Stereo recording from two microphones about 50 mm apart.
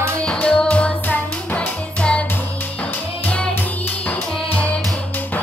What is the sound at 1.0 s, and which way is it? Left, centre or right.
Music, left.